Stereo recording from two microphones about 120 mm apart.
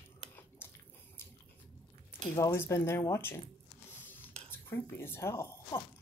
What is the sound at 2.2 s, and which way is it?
Speech, 25° left (ahead or behind).